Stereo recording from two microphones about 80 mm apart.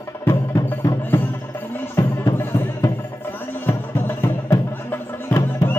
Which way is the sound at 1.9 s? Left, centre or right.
Left.